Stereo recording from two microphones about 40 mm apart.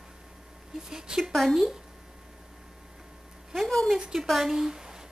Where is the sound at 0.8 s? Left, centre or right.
Centre.